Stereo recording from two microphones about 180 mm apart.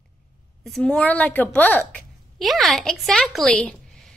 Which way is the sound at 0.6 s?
5° left (ahead or behind).